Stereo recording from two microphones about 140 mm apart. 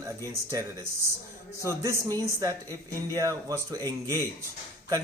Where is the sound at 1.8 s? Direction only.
25° right (ahead or behind).